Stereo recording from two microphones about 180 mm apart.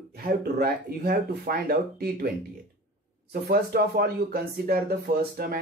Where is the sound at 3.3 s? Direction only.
60° right (ahead or behind).